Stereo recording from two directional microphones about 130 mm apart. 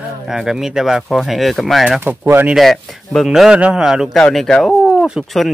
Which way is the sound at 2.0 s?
20° right (ahead or behind).